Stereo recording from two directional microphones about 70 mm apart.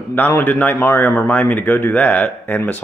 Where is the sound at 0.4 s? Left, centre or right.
Left.